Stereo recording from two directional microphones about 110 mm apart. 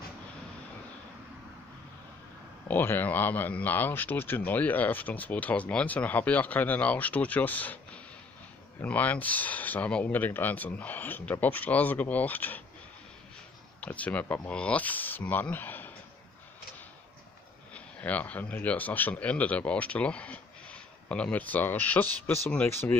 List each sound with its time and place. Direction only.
2.7 s speech: 20° left (ahead or behind)
13.7 s speech: 15° left (ahead or behind)
17.7 s speech: 15° left (ahead or behind)